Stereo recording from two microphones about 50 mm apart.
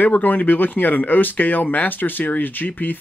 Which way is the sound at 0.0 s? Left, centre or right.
Left.